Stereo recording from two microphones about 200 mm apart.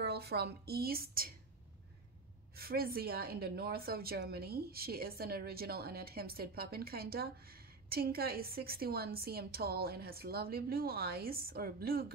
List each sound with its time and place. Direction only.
0.0 s a woman's voice: 55° right (ahead or behind)
2.5 s a woman's voice: 50° right (ahead or behind)